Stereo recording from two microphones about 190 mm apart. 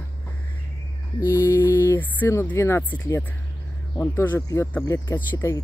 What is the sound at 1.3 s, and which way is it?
Speech, 10° left (ahead or behind).